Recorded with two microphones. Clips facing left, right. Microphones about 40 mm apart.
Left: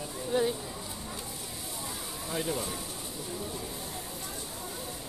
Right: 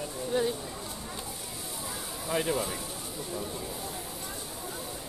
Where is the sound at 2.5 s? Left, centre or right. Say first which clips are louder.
Right 3 dB; centre.